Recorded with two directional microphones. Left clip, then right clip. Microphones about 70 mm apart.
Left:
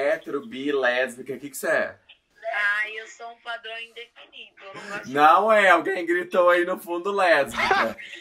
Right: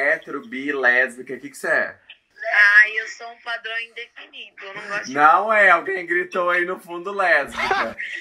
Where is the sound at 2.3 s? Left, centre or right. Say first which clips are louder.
Right 11 dB; right.